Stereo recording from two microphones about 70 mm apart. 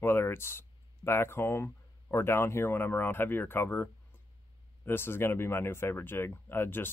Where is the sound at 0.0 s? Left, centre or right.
Left.